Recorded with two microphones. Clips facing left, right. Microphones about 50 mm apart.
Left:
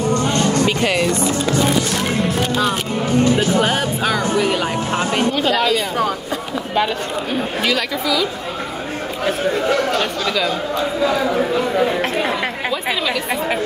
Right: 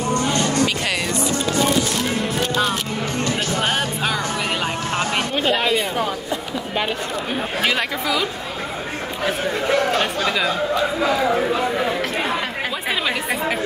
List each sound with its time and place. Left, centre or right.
3.7 s speech: centre
5.3 s speech: right
7.6 s speech: right
9.7 s speech: right